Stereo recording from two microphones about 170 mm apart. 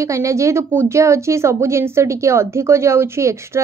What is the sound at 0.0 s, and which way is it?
A woman's voice, 15° right (ahead or behind).